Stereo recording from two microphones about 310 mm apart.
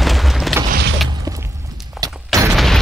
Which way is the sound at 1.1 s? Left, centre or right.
Centre.